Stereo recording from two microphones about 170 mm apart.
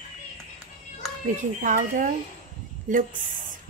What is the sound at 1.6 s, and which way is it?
Speech, 50° right (ahead or behind).